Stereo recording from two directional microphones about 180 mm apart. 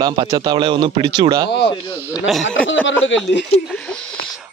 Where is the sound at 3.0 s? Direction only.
90° left.